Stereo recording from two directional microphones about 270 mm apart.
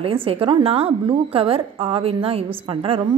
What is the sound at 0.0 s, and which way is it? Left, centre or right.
A woman's voice, centre.